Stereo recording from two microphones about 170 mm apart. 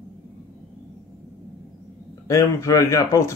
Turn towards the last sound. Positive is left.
turn(degrees=20)  # may be behind; listen again after turning